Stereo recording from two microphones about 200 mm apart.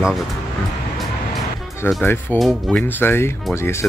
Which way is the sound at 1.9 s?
5° left (ahead or behind).